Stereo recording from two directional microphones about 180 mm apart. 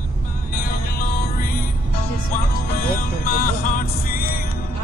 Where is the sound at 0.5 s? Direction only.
55° left (ahead or behind).